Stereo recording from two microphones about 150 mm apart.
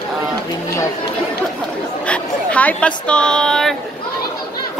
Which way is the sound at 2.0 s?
10° left (ahead or behind).